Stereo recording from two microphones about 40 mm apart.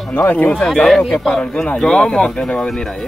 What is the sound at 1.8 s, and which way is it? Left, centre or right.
Speech, centre.